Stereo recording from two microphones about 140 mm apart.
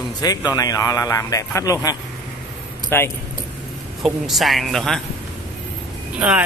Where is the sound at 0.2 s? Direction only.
25° left (ahead or behind).